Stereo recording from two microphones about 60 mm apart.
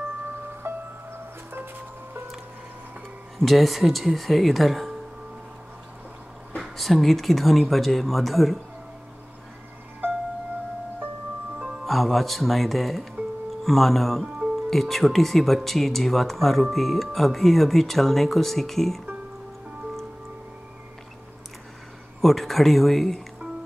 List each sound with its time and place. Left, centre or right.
0.6 s music: right
3.3 s speech: centre
6.6 s speech: centre
11.8 s speech: centre
22.2 s speech: centre